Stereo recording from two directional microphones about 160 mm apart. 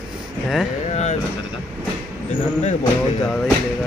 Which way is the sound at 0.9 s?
45° left (ahead or behind).